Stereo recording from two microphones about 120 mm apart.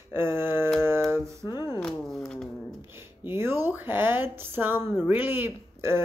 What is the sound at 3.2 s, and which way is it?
Speech, 20° right (ahead or behind).